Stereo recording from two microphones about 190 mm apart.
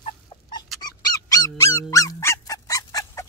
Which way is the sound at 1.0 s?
20° left (ahead or behind).